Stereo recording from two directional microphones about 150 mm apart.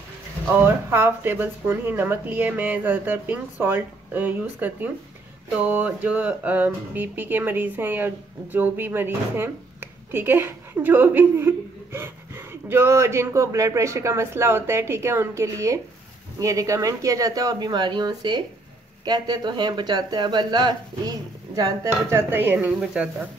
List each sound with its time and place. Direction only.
0.5 s speech: 15° right (ahead or behind)